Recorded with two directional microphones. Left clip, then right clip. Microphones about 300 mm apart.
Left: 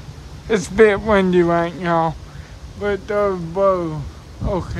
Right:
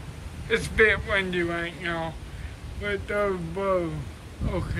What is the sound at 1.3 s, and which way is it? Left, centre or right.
Speech, left.